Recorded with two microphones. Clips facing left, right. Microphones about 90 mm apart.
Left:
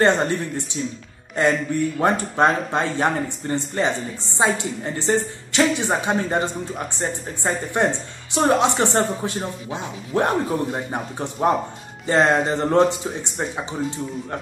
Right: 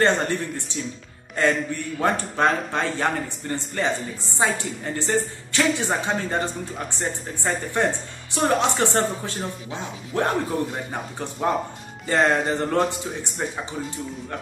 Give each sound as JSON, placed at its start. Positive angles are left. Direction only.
{"t": 0.0, "sound": "speech", "side_deg": 20}